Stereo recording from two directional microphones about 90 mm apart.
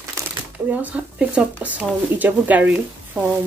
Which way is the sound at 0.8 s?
15° right (ahead or behind).